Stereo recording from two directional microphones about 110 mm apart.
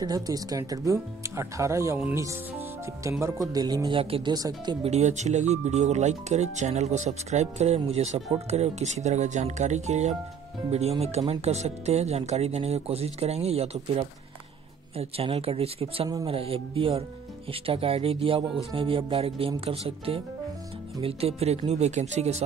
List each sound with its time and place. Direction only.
0.0 s speech: 35° right (ahead or behind)
3.0 s speech: 25° right (ahead or behind)
4.0 s speech: 60° right (ahead or behind)
4.3 s speech: 35° right (ahead or behind)
4.8 s speech: 85° right
10.7 s speech: 75° right (ahead or behind); by 22.4 s 90° right